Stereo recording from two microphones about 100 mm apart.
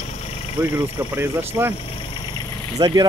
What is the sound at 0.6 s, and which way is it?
Speech, 30° right (ahead or behind).